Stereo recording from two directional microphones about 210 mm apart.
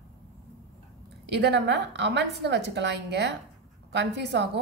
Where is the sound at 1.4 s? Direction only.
55° right (ahead or behind).